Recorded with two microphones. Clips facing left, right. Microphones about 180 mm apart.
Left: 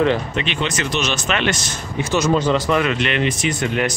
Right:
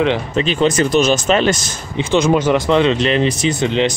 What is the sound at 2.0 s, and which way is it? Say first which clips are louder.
Speech: right 4 dB; 20° right (ahead or behind).